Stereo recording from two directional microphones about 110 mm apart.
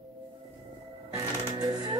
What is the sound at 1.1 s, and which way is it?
Music, 35° right (ahead or behind).